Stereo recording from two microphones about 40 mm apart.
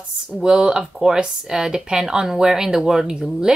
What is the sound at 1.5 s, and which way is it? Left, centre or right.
Speech, centre.